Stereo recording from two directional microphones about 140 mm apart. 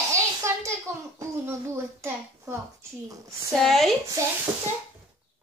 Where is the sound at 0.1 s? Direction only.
20° right (ahead or behind).